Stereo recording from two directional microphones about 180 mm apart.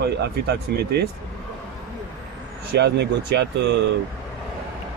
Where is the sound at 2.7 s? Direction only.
70° right (ahead or behind).